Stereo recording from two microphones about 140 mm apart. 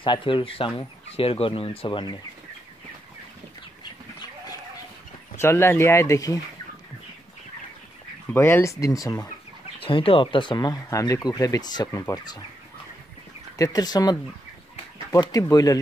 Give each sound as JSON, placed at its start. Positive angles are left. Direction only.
{"t": 0.0, "sound": "speech", "side_deg": 35}
{"t": 5.4, "sound": "speech", "side_deg": 20}
{"t": 8.3, "sound": "speech", "side_deg": 15}
{"t": 9.8, "sound": "speech", "side_deg": 40}
{"t": 13.6, "sound": "speech", "side_deg": 25}